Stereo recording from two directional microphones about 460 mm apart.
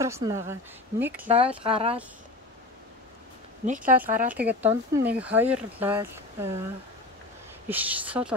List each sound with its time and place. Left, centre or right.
0.0 s speech: centre
3.6 s speech: centre
3.9 s speech: centre
7.6 s speech: centre